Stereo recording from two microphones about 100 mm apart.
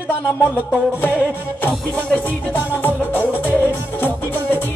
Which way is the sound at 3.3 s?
15° right (ahead or behind).